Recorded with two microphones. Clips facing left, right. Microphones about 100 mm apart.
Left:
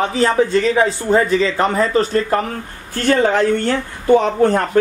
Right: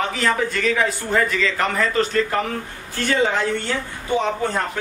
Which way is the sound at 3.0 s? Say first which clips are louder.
Left 6 dB; 50° left (ahead or behind).